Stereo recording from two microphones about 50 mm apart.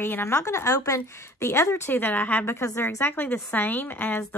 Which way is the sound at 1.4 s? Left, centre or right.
Left.